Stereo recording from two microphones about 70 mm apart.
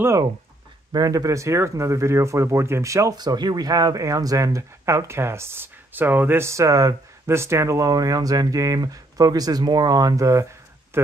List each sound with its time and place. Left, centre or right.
0.9 s speech: right
3.2 s speech: right
7.2 s speech: right